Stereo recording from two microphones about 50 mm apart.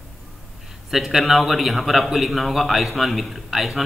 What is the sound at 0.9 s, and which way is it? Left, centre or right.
A man's voice, centre.